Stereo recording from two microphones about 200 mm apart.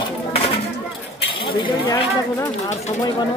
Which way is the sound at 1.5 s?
25° left (ahead or behind).